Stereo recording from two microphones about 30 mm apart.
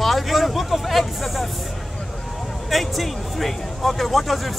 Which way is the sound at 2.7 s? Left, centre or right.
Centre.